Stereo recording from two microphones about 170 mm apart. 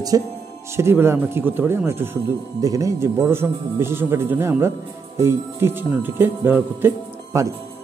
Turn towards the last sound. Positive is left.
turn(degrees=-20)  # may be behind; listen again after turning